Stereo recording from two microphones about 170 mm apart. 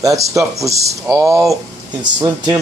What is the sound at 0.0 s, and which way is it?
Speech, 20° right (ahead or behind).